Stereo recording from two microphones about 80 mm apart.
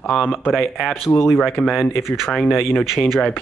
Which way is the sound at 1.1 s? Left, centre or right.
Left.